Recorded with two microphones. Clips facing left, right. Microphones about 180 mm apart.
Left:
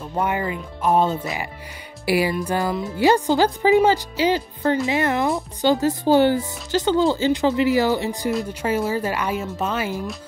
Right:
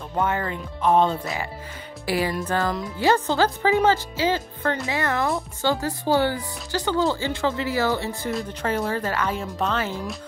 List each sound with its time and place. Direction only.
0.2 s speech: 10° left (ahead or behind)
8.3 s speech: 5° left (ahead or behind)